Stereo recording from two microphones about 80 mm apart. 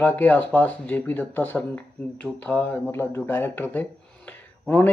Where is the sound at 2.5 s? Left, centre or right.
Centre.